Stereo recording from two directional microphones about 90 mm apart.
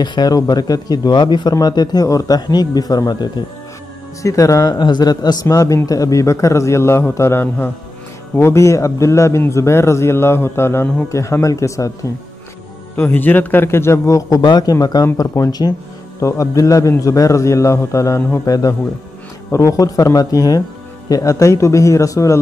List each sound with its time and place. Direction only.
0.0 s speech: 50° left (ahead or behind)
4.2 s a man's voice: 35° left (ahead or behind)
4.7 s a man's voice: 55° left (ahead or behind); by 12.1 s 35° left (ahead or behind)
12.9 s a man's voice: 20° left (ahead or behind); by 14.4 s 35° left (ahead or behind)
14.4 s a man's voice: 55° left (ahead or behind); by 22.4 s 40° left (ahead or behind)